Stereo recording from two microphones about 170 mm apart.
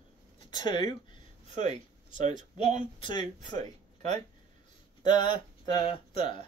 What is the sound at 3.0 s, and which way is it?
Speech, 25° left (ahead or behind).